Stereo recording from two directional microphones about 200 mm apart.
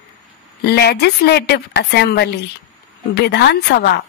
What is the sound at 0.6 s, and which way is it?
A woman's voice, 55° left (ahead or behind).